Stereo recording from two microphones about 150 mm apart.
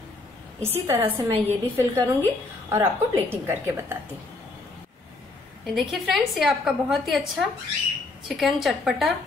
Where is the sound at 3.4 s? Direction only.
15° right (ahead or behind).